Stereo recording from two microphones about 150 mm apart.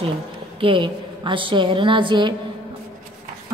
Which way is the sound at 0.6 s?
35° right (ahead or behind).